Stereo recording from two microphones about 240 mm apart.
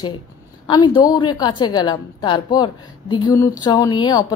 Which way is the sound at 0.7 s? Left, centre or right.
Centre.